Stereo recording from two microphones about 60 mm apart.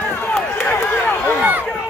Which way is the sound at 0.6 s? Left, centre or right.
Left.